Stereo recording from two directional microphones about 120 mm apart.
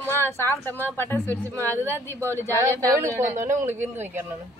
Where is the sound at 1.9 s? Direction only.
20° right (ahead or behind).